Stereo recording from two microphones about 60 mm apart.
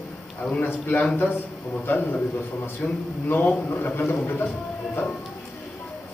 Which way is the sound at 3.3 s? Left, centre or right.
Left.